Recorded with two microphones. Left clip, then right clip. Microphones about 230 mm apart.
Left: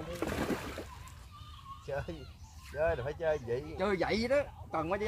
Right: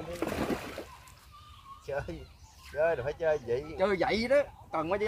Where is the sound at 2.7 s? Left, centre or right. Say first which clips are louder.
Right 4 dB; right.